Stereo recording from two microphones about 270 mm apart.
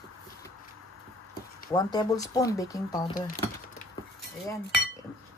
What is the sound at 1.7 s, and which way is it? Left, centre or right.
Speech, centre.